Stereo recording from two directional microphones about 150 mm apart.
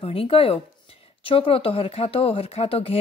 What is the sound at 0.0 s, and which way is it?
Speech, 40° left (ahead or behind).